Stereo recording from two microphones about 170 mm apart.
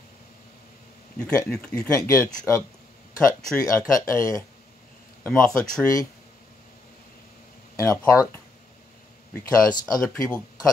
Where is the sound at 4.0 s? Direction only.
20° left (ahead or behind).